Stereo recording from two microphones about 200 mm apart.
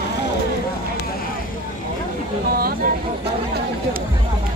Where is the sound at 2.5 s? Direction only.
50° right (ahead or behind).